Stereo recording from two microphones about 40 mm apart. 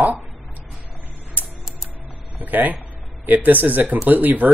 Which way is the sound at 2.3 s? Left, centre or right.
Right.